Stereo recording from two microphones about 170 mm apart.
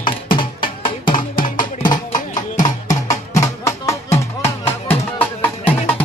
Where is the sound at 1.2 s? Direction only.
50° left (ahead or behind).